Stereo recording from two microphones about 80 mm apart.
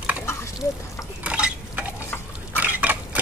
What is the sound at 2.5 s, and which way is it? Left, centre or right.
Liquid, centre.